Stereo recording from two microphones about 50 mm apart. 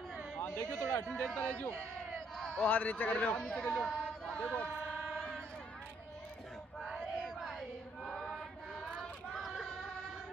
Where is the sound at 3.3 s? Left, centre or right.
Centre.